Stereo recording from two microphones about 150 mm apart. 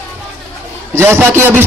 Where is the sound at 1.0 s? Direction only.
15° right (ahead or behind).